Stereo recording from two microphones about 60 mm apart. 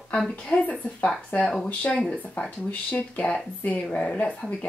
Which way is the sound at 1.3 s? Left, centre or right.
Left.